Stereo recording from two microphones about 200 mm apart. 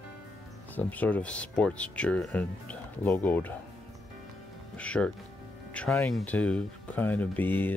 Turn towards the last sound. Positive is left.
turn(degrees=10)  # may be behind; listen again after turning